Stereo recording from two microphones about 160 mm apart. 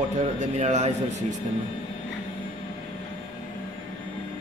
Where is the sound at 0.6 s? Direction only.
45° right (ahead or behind).